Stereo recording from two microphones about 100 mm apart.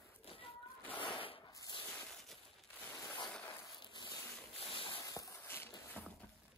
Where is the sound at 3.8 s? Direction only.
50° left (ahead or behind).